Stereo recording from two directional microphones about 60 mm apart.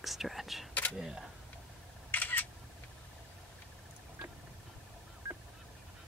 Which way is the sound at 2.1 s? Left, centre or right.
Left.